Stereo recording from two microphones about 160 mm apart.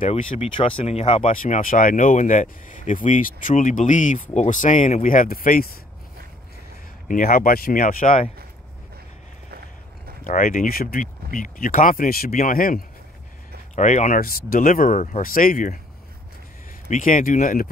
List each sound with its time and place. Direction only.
0.1 s speech: 35° left (ahead or behind)
1.2 s speech: 55° left (ahead or behind)
7.1 s speech: 60° left (ahead or behind)
10.2 s speech: 60° left (ahead or behind)
13.7 s speech: 50° left (ahead or behind)
16.9 s speech: 55° left (ahead or behind)